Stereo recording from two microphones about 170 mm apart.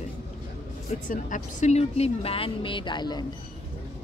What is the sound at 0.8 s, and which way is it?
Speech, 45° left (ahead or behind).